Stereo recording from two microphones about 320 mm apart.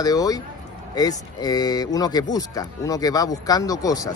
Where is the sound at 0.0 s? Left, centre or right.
Centre.